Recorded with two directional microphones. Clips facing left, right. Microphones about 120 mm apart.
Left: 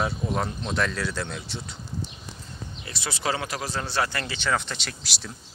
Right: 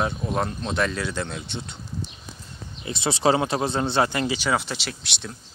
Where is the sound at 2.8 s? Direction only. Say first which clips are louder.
Right 9 dB; 20° right (ahead or behind); by 5.3 s centre (ahead or behind).